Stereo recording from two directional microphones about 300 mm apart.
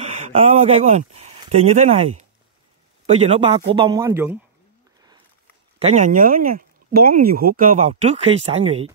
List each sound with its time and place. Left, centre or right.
0.0 s speech: right
5.8 s speech: right